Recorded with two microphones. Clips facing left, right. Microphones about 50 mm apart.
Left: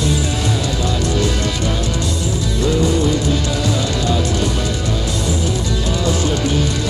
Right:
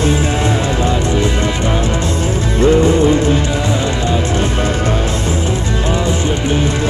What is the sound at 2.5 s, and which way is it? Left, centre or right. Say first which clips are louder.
Music: right 7 dB; right.